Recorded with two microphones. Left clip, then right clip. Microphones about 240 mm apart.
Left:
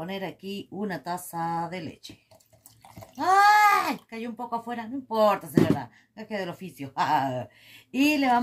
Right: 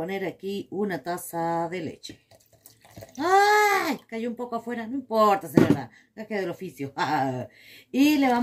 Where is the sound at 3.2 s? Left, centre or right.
Left.